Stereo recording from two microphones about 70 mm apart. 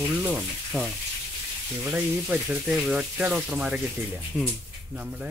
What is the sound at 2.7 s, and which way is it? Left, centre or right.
A man's voice, centre.